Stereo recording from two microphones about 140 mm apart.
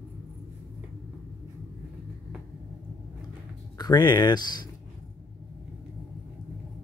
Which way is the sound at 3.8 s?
30° left (ahead or behind).